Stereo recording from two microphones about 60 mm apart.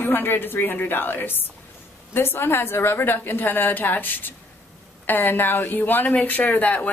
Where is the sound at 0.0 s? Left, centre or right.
Left.